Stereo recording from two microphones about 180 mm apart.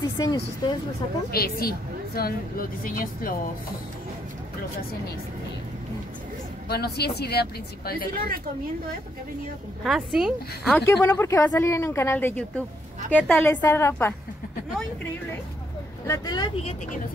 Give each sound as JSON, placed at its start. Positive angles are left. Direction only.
{"t": 0.2, "sound": "speech", "side_deg": 20}
{"t": 1.3, "sound": "a woman's voice", "side_deg": 55}
{"t": 6.7, "sound": "a woman's voice", "side_deg": 60}
{"t": 8.1, "sound": "speech", "side_deg": -55}
{"t": 9.8, "sound": "speech", "side_deg": 0}
{"t": 10.7, "sound": "speech", "side_deg": 10}
{"t": 16.1, "sound": "speech", "side_deg": 25}